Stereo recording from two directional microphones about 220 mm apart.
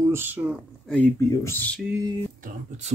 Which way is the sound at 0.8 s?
5° left (ahead or behind).